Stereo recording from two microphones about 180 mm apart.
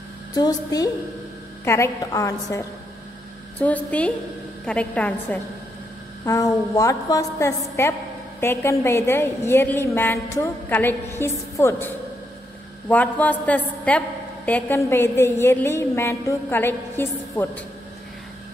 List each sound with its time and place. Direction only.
0.3 s a woman's voice: 20° left (ahead or behind)
3.5 s a woman's voice: 10° left (ahead or behind)
6.2 s a woman's voice: 20° left (ahead or behind)